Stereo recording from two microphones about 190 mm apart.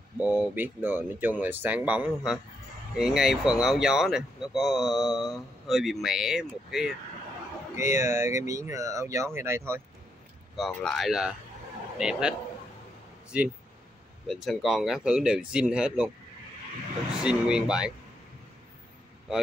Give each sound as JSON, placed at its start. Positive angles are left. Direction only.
{"t": 0.2, "sound": "speech", "side_deg": -10}
{"t": 7.7, "sound": "speech", "side_deg": -15}
{"t": 10.5, "sound": "speech", "side_deg": 5}
{"t": 17.2, "sound": "speech", "side_deg": -5}